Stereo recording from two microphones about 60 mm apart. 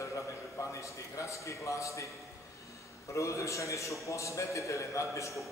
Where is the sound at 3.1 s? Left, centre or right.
Left.